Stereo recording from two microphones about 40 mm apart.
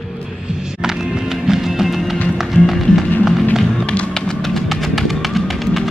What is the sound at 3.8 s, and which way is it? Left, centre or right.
Music, left.